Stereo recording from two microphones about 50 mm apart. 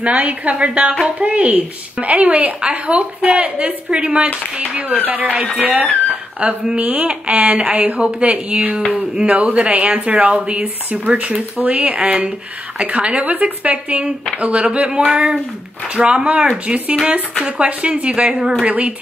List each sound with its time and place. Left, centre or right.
0.0 s a woman's voice: right
18.7 s a woman's voice: right